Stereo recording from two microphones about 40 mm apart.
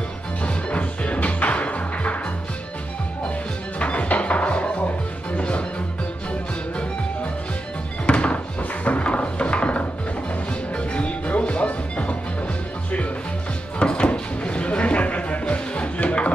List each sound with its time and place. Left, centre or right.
0.4 s music: left
3.8 s music: left
8.1 s music: left
13.7 s a sound: left